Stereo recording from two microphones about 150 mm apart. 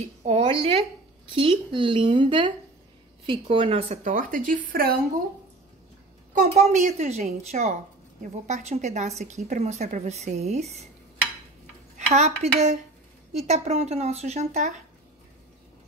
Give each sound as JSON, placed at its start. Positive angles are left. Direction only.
{"t": 0.0, "sound": "speech", "side_deg": -45}
{"t": 4.0, "sound": "speech", "side_deg": -65}
{"t": 6.3, "sound": "speech", "side_deg": -50}
{"t": 12.1, "sound": "speech", "side_deg": -45}